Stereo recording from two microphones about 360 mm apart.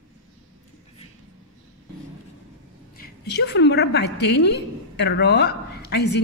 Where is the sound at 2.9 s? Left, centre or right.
Left.